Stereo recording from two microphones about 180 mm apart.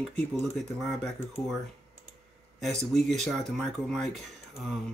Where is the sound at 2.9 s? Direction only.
Centre (ahead or behind).